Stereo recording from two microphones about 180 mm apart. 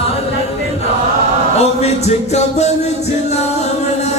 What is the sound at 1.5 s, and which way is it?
Speech, 35° left (ahead or behind).